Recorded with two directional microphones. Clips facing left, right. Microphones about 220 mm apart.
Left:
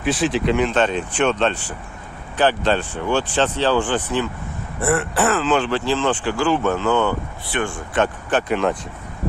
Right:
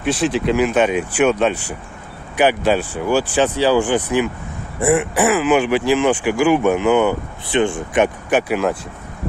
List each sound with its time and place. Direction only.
0.0 s speech: centre (ahead or behind)